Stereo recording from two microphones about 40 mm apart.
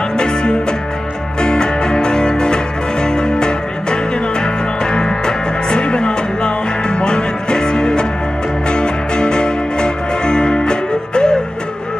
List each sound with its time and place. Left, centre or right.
0.2 s music: centre